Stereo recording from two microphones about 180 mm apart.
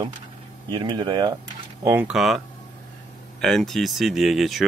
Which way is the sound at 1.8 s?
10° right (ahead or behind).